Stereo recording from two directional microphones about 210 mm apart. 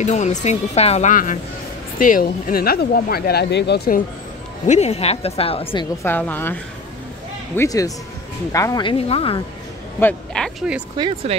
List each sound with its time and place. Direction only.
0.0 s speech: 35° left (ahead or behind); by 4.0 s 50° left (ahead or behind)
4.6 s a woman's voice: 30° left (ahead or behind)
6.0 s a woman's voice: 10° left (ahead or behind); by 9.4 s 25° left (ahead or behind)
9.9 s speech: 5° left (ahead or behind)
11.0 s speech: 25° right (ahead or behind)